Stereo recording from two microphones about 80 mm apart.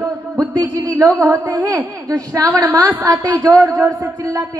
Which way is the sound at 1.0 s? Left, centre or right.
Right.